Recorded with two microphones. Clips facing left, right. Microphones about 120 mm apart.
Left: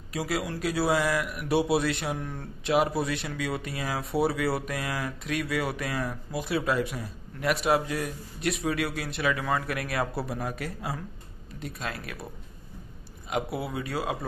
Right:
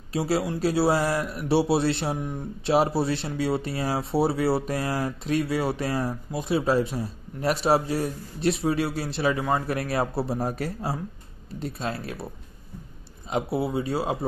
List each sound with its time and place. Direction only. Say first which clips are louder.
0.1 s speech: right 5 dB; 30° right (ahead or behind)
2.1 s speech: right 4 dB; 15° right (ahead or behind)
2.6 s speech: right 3 dB; 30° right (ahead or behind)
13.3 s speech: right 5 dB; 25° right (ahead or behind)